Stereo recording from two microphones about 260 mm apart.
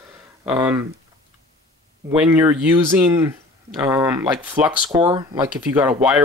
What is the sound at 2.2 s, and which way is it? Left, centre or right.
Speech, centre.